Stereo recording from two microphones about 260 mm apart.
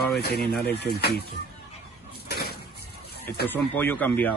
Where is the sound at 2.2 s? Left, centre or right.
Left.